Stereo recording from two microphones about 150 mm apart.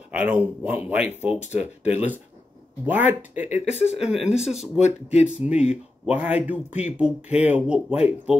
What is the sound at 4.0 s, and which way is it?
Speech, 5° right (ahead or behind).